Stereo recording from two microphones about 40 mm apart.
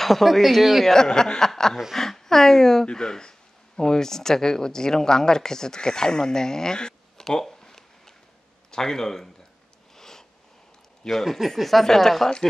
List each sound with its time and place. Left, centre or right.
0.0 s speech: centre
0.9 s speech: centre
7.6 s a sound: centre
8.7 s speech: centre
9.9 s a sound: centre
11.1 s speech: centre